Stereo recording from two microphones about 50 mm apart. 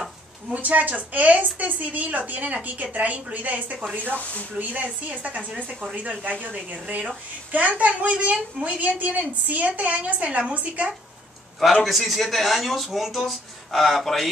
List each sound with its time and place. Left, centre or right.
0.5 s a woman's voice: right
4.2 s speech: left
4.6 s a woman's voice: right
11.8 s speech: centre